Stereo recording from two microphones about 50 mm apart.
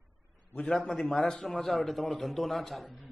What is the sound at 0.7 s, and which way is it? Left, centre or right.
A man's voice, centre.